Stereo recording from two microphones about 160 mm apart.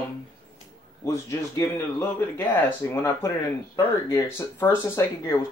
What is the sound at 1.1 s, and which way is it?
Speech, 15° left (ahead or behind).